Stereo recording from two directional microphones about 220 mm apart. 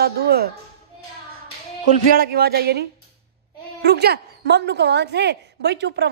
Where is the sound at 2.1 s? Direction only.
45° right (ahead or behind).